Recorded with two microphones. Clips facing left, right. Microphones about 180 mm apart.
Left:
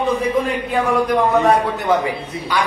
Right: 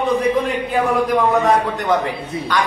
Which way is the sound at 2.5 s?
10° left (ahead or behind).